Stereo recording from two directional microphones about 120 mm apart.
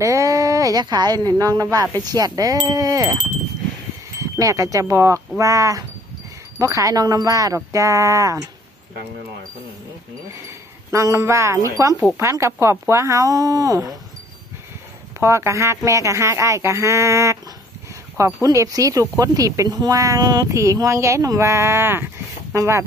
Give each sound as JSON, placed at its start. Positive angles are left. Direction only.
{"t": 0.0, "sound": "speech", "side_deg": -25}
{"t": 4.2, "sound": "speech", "side_deg": -30}
{"t": 10.9, "sound": "speech", "side_deg": -25}
{"t": 15.1, "sound": "speech", "side_deg": -25}